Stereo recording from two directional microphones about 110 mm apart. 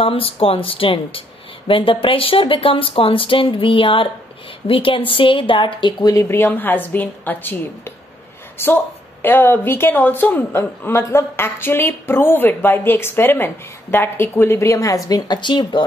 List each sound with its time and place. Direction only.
0.0 s speech: 55° left (ahead or behind); by 6.2 s 40° left (ahead or behind)
6.2 s a woman's voice: 20° left (ahead or behind); by 15.8 s 45° left (ahead or behind)